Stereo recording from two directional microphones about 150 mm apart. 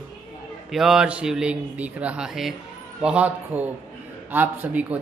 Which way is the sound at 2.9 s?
10° right (ahead or behind).